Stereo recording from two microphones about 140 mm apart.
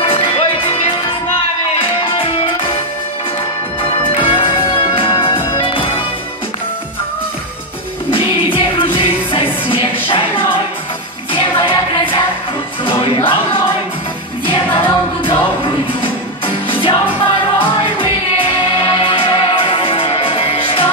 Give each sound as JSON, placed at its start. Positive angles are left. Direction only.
{"t": 0.0, "sound": "music", "side_deg": 40}
{"t": 2.1, "sound": "music", "side_deg": 40}
{"t": 4.2, "sound": "music", "side_deg": 40}
{"t": 8.1, "sound": "music", "side_deg": 40}
{"t": 14.4, "sound": "music", "side_deg": 40}
{"t": 16.6, "sound": "music", "side_deg": 35}